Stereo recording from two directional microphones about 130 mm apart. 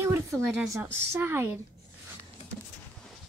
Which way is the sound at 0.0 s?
20° right (ahead or behind).